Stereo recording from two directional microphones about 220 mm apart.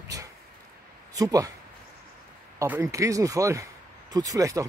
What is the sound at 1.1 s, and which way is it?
Speech, 15° right (ahead or behind).